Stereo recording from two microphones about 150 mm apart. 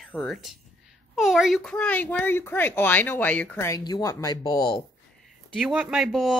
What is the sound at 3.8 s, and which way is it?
Speech, 25° left (ahead or behind).